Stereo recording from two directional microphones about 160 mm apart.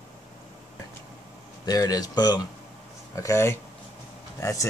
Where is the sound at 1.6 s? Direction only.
25° left (ahead or behind).